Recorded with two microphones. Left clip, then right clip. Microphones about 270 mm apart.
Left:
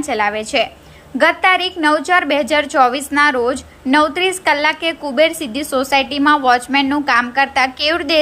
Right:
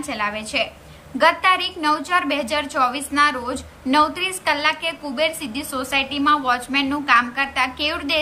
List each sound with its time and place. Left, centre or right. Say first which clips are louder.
0.0 s a woman's voice: left 7 dB; centre